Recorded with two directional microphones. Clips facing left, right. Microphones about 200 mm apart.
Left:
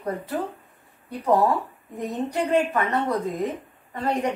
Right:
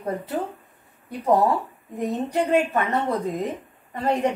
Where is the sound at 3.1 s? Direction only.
15° right (ahead or behind).